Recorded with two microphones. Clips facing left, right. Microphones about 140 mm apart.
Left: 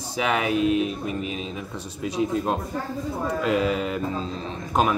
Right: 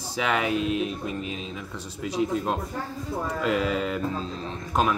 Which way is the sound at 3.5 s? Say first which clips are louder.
Left 2 dB; 10° left (ahead or behind).